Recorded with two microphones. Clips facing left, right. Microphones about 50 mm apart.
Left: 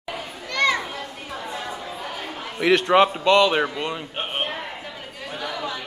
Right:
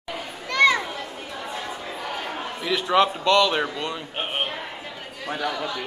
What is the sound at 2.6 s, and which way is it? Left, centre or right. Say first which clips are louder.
Speech: left 8 dB; left.